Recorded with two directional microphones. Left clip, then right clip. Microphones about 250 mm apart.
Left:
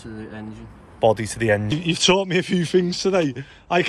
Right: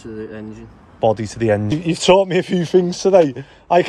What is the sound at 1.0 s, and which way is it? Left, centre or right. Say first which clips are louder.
Speech: right 2 dB; centre.